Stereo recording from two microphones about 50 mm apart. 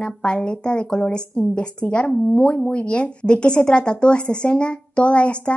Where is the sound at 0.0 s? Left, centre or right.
Centre.